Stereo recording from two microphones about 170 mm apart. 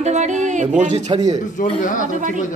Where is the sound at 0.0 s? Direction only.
45° right (ahead or behind).